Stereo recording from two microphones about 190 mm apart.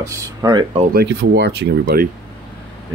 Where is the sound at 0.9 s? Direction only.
65° right (ahead or behind).